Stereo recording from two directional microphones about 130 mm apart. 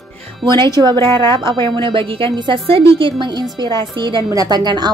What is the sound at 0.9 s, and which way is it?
Speech, 20° left (ahead or behind).